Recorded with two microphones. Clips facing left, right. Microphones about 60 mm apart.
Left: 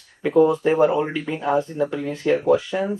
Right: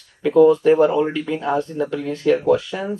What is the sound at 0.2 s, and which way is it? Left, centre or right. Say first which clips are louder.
Speech: right 4 dB; left.